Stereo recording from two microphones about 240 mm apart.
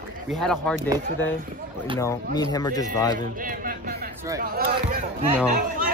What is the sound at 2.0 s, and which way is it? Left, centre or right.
Speech, centre.